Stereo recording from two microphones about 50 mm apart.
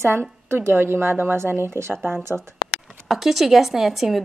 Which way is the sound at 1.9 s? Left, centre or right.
Centre.